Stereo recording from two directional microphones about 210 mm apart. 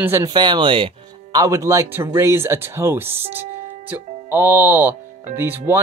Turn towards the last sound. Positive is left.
turn(degrees=-10)  # may be behind; listen again after turning